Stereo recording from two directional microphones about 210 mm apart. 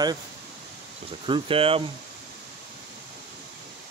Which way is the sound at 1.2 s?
25° right (ahead or behind).